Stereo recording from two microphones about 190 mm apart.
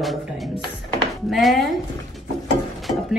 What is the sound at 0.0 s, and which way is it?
Music, centre (ahead or behind).